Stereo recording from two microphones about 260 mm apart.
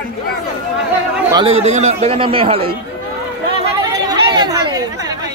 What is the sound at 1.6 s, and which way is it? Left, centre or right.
Speech, right.